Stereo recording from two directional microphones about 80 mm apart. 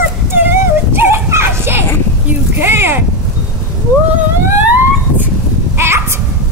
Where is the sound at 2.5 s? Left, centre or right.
Right.